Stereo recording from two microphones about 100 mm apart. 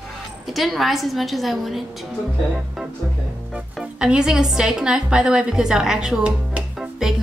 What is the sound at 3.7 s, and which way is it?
A woman's voice, 5° right (ahead or behind).